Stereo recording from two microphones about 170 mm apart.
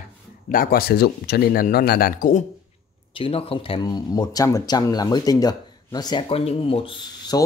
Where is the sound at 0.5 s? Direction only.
55° left (ahead or behind).